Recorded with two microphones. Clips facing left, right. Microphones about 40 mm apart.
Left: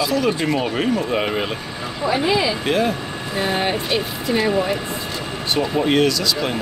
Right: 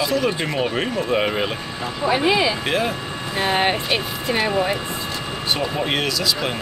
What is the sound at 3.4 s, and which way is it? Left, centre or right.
Speech, right.